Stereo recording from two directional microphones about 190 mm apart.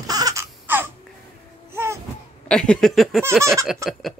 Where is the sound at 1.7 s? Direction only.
15° right (ahead or behind).